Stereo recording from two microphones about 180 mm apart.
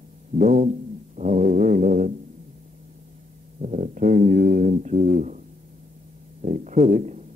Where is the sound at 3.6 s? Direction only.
45° right (ahead or behind).